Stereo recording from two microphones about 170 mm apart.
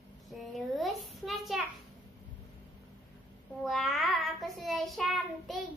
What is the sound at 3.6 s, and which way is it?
Child singing, centre (ahead or behind).